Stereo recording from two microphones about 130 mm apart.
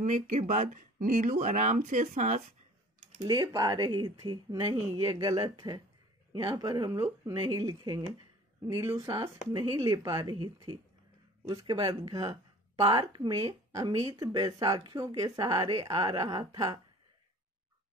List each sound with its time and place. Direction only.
0.0 s speech: 70° right (ahead or behind)
3.3 s speech: 30° right (ahead or behind)
5.1 s speech: 25° right (ahead or behind)
9.5 s speech: 35° right (ahead or behind)